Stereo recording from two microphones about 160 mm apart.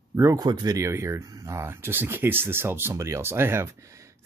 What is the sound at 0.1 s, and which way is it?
Speech, 20° right (ahead or behind).